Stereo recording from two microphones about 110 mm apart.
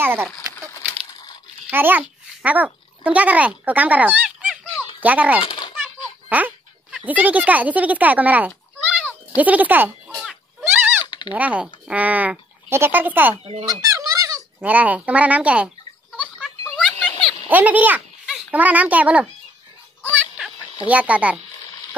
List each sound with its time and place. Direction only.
0.0 s speech: 20° right (ahead or behind)
1.7 s a child's voice: 15° right (ahead or behind)
5.4 s children playing: 45° left (ahead or behind)
6.2 s speech: 15° right (ahead or behind)
10.6 s a sound: 20° right (ahead or behind)
11.1 s a sound: 45° left (ahead or behind)
11.3 s speech: 15° right (ahead or behind)
13.7 s a sound: 30° right (ahead or behind)
14.6 s speech: 15° right (ahead or behind)
16.3 s music: 10° left (ahead or behind)
17.5 s speech: 15° right (ahead or behind)
20.8 s speech: 15° right (ahead or behind)